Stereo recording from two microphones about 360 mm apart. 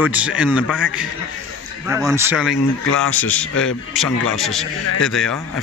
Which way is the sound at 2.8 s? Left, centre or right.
Left.